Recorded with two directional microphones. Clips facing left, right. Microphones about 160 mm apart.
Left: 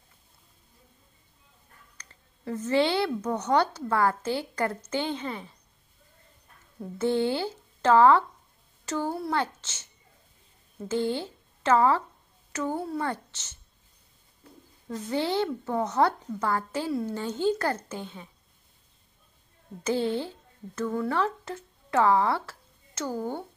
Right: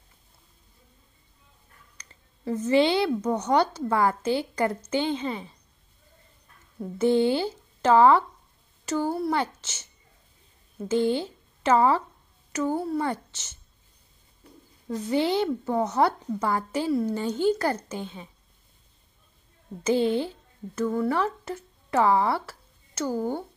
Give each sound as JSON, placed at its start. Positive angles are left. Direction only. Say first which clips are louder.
{"t": 2.0, "sound": "speech", "louder": "even", "side_deg": -15}
{"t": 7.0, "sound": "speech", "louder": "right 4 dB", "side_deg": -15}
{"t": 10.9, "sound": "speech", "louder": "right 4 dB", "side_deg": -20}
{"t": 14.9, "sound": "speech", "louder": "right 4 dB", "side_deg": -15}
{"t": 19.8, "sound": "speech", "louder": "right 4 dB", "side_deg": -15}